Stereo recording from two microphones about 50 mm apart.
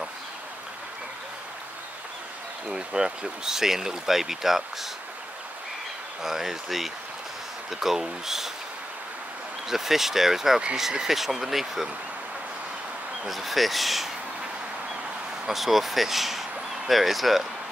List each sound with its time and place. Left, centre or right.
2.7 s speech: centre
6.2 s speech: centre
9.7 s speech: centre
13.3 s speech: centre
15.4 s speech: centre